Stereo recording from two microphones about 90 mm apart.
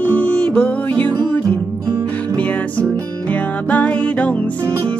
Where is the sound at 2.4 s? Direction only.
15° left (ahead or behind).